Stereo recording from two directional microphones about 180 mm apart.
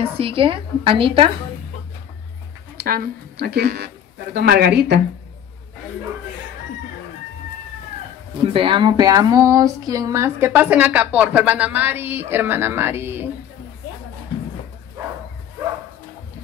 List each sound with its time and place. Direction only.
0.2 s a woman's voice: 30° right (ahead or behind)
2.8 s speech: 60° right (ahead or behind)
8.5 s speech: 30° right (ahead or behind); by 13.3 s 10° right (ahead or behind)